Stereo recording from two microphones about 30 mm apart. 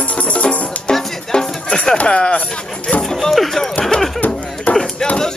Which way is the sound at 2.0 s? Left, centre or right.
Left.